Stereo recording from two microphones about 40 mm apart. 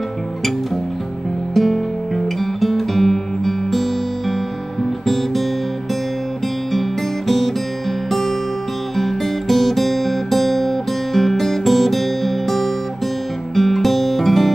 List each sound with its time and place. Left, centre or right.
1.5 s music: centre
5.0 s music: centre
6.7 s music: centre
8.9 s guitar: centre
13.6 s music: centre